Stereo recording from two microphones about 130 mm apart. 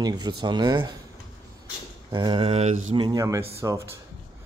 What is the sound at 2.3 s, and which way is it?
Mantra, 45° right (ahead or behind).